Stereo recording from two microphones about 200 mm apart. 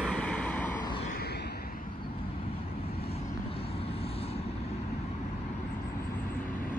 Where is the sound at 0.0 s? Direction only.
5° left (ahead or behind).